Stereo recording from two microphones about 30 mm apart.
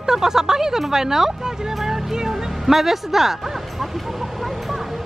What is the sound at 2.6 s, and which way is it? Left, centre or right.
Speech, centre.